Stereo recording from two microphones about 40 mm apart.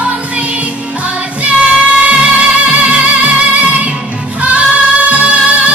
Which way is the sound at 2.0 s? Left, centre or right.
Right.